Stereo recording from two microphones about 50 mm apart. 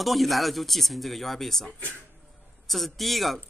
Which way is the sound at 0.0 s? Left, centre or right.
Centre.